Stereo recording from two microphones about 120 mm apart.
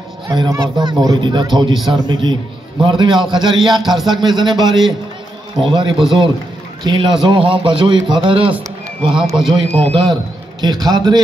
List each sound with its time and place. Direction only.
0.3 s a man's voice: 40° right (ahead or behind)
9.1 s a man's voice: centre (ahead or behind)
9.8 s a man's voice: 45° right (ahead or behind)
10.6 s speech: 35° right (ahead or behind)